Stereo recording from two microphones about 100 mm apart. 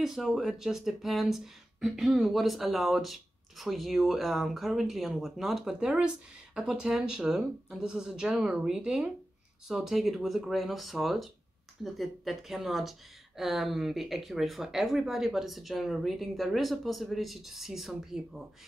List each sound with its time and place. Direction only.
0.0 s speech: centre (ahead or behind)